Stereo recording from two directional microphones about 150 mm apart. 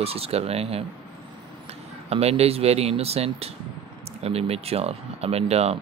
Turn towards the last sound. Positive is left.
turn(degrees=-45)  # may be behind; listen again after turning